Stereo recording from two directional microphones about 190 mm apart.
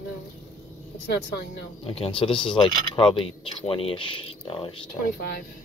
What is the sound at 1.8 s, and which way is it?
Speech, 30° left (ahead or behind).